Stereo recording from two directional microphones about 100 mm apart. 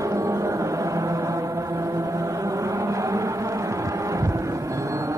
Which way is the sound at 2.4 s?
30° right (ahead or behind).